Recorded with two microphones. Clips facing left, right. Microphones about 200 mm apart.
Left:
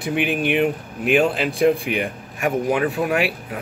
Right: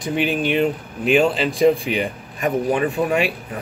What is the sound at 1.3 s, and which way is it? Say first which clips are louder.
Speech: right 2 dB; 60° left (ahead or behind).